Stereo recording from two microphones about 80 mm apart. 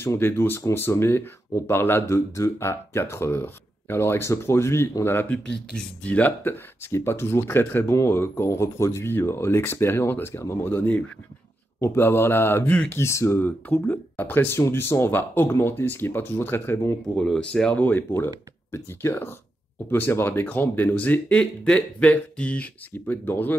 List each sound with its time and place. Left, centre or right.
0.0 s speech: left
6.9 s speech: left
11.8 s speech: left
13.4 s speech: left
17.1 s speech: centre
17.7 s speech: left